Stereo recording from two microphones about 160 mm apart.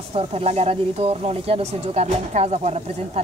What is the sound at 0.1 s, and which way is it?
Speech, 40° right (ahead or behind).